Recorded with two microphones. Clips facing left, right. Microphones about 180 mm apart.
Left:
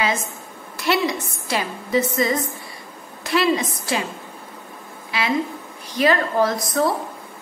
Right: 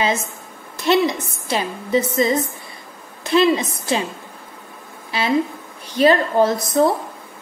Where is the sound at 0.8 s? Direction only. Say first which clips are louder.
Right 4 dB; 20° right (ahead or behind).